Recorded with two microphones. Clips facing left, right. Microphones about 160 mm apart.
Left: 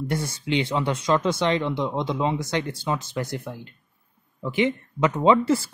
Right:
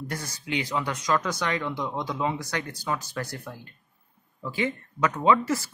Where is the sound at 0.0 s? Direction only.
25° left (ahead or behind).